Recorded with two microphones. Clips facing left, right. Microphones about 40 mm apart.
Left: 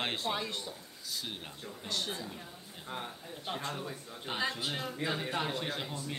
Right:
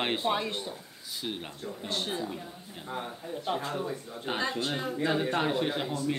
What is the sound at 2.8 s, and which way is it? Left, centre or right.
A man's voice, centre.